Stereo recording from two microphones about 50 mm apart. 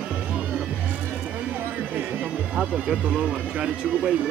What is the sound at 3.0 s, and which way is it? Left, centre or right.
Speech, right.